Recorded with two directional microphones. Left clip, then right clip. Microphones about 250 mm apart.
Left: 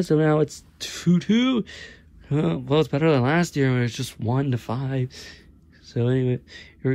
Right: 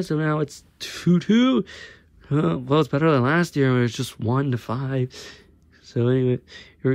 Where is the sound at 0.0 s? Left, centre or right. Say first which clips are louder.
Left 4 dB; centre.